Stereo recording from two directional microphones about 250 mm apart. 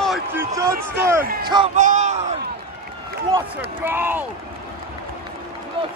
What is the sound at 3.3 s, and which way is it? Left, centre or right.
Speech, centre.